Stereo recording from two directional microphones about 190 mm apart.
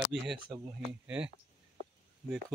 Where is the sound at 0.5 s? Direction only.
Centre (ahead or behind).